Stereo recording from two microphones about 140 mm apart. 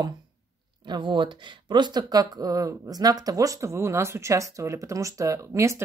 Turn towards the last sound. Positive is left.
turn(degrees=-20)  # may be behind; listen again after turning